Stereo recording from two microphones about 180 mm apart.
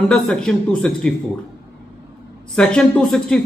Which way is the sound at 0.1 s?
5° left (ahead or behind).